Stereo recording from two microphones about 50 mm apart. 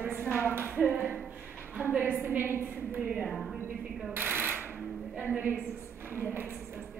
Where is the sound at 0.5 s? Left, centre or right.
Right.